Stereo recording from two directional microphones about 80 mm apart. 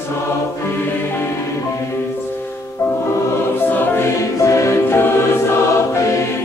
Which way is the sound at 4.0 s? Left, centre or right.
Left.